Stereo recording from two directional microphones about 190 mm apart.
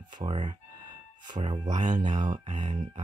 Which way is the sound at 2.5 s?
40° right (ahead or behind).